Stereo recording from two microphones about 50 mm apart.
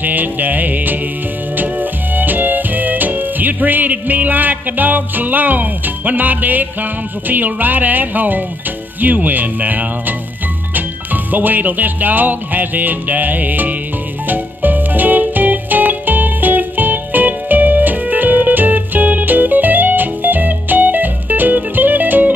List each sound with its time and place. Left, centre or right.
0.0 s music: right
11.3 s music: right